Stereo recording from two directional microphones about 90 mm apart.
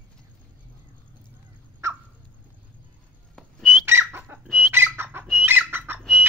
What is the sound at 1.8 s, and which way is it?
Rodents, 30° right (ahead or behind).